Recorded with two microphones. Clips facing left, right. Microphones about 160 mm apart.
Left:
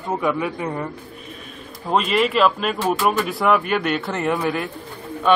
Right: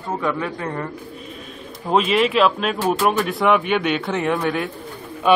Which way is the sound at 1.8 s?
Centre (ahead or behind).